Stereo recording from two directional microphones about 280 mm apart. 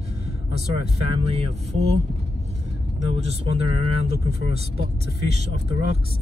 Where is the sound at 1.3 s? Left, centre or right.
Right.